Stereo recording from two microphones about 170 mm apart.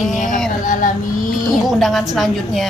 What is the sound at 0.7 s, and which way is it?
Child singing, 50° left (ahead or behind).